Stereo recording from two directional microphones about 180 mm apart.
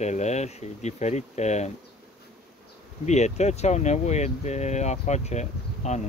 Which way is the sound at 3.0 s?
40° left (ahead or behind).